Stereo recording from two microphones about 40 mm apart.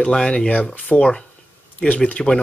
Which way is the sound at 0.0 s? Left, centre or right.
Left.